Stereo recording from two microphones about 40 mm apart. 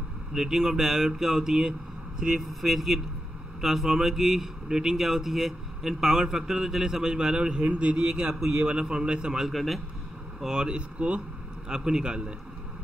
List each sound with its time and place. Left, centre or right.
0.3 s a man's voice: centre
9.5 s speech: centre
10.4 s speech: right
11.7 s speech: centre